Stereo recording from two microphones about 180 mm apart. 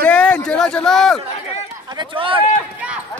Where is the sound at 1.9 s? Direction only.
30° right (ahead or behind).